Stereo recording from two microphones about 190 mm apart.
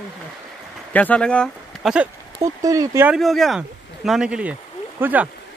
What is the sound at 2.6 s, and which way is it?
Speech, 15° right (ahead or behind).